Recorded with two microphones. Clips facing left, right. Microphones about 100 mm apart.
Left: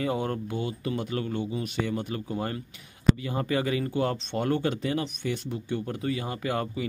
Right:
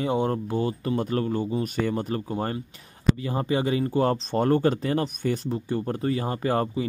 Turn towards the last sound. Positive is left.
turn(degrees=-35)  # may be behind; listen again after turning